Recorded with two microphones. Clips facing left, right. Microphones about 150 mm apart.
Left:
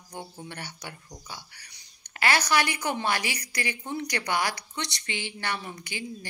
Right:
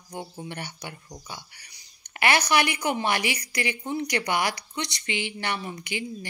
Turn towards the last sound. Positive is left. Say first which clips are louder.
# right 4 dB
turn(degrees=-15)  # may be behind; listen again after turning